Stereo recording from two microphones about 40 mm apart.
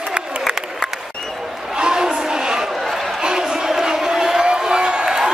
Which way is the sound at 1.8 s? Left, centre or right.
Centre.